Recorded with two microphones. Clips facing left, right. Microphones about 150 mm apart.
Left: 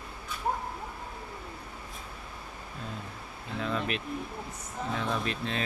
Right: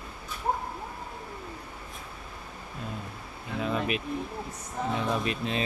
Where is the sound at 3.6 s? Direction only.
10° right (ahead or behind).